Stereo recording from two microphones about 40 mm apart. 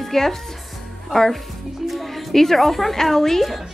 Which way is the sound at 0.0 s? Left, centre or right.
Centre.